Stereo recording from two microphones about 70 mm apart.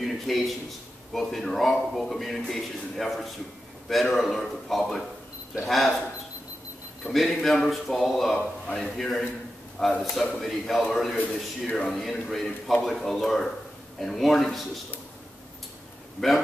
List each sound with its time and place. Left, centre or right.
0.0 s a man's voice: centre
7.1 s speech: centre
8.4 s a man's voice: centre
8.8 s speech: centre